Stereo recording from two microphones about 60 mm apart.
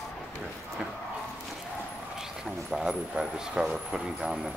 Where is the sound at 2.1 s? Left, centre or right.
Centre.